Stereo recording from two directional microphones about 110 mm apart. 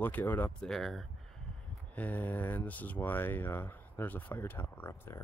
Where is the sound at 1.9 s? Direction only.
15° left (ahead or behind).